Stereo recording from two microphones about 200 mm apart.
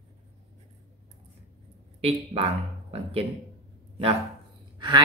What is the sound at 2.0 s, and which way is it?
Speech, 30° right (ahead or behind).